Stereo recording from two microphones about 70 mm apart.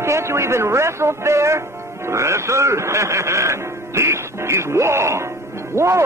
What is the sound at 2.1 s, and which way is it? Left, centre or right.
Speech, right.